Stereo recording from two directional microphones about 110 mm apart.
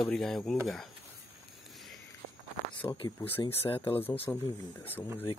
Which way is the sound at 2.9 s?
45° left (ahead or behind).